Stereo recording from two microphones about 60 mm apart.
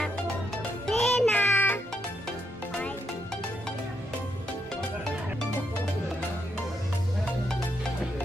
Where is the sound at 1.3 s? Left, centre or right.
Left.